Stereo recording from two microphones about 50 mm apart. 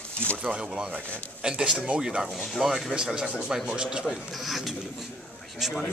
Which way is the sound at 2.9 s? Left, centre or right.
Centre.